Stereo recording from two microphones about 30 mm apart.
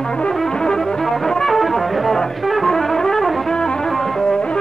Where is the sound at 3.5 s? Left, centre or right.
Left.